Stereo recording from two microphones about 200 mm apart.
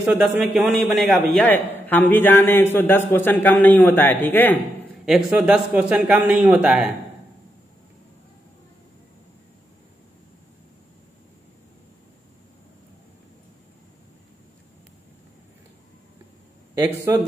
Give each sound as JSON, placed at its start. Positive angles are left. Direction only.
{"t": 0.0, "sound": "a man's voice", "side_deg": -5}
{"t": 5.0, "sound": "a man's voice", "side_deg": -5}
{"t": 16.8, "sound": "a man's voice", "side_deg": -15}